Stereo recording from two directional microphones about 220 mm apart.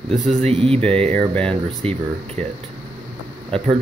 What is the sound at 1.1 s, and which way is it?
Speech, 5° left (ahead or behind).